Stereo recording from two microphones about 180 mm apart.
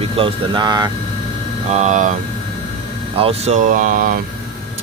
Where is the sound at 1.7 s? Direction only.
40° right (ahead or behind).